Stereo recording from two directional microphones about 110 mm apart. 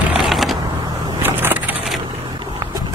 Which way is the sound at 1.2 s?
20° right (ahead or behind).